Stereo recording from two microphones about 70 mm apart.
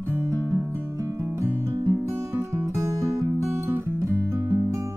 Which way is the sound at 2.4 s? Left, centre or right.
Right.